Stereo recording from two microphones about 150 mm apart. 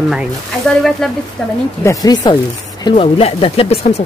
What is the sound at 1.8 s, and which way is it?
Speech, 25° left (ahead or behind).